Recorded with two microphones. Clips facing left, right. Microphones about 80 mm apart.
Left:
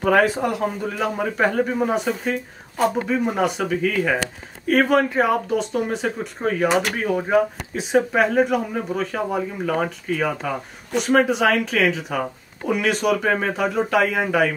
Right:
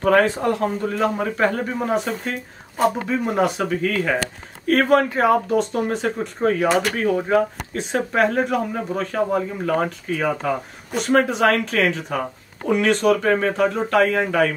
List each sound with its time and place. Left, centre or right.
0.0 s speech: centre
6.7 s speech: centre